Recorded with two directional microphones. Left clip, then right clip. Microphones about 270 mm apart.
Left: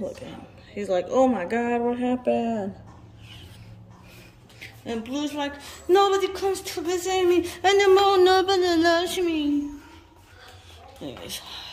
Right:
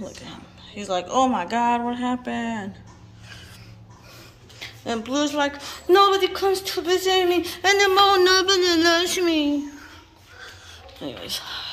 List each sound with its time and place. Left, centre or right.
0.2 s a sound: right
1.1 s mantra: right
4.6 s a woman's voice: centre
11.0 s a woman's voice: centre